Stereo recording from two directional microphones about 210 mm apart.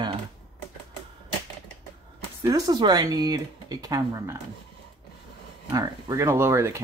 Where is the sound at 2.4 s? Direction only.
20° right (ahead or behind).